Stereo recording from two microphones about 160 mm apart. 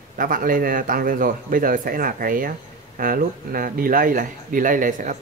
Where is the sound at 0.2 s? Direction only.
60° right (ahead or behind).